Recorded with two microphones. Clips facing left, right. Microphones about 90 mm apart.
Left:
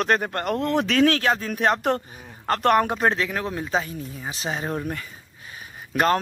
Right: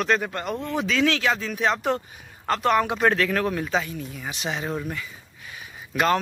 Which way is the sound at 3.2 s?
20° left (ahead or behind).